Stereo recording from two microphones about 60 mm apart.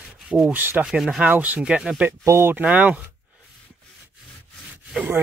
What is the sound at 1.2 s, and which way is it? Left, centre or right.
Speech, right.